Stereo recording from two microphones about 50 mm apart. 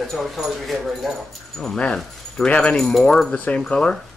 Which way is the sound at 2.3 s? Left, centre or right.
Centre.